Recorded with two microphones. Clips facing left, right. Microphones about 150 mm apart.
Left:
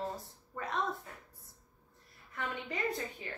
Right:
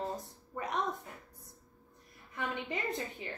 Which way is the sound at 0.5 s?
20° right (ahead or behind).